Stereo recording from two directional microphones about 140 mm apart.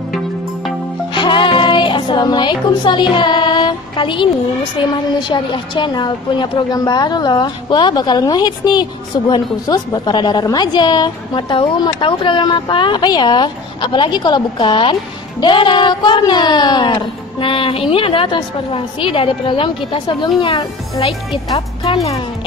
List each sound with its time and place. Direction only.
1.1 s music: 35° left (ahead or behind)
5.3 s a woman's voice: 35° left (ahead or behind)